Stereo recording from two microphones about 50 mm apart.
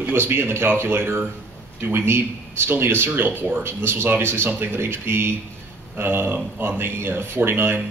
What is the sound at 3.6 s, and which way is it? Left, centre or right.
Speech, right.